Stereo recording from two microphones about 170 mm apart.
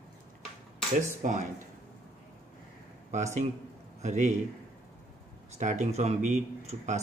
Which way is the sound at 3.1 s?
40° right (ahead or behind).